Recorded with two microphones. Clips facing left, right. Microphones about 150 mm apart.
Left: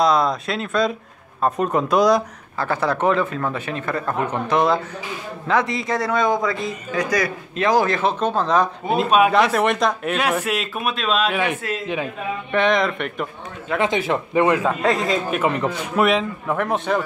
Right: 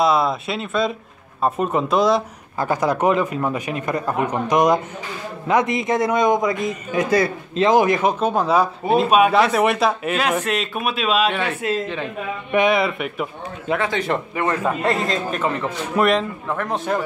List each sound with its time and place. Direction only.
0.0 s speech: 5° right (ahead or behind)
2.5 s a man's voice: 15° right (ahead or behind)
11.6 s a man's voice: 20° right (ahead or behind); by 13.7 s 5° right (ahead or behind)
13.7 s a man's voice: 20° left (ahead or behind)
14.6 s speech: centre (ahead or behind)
15.3 s a man's voice: 15° left (ahead or behind)
16.0 s speech: centre (ahead or behind)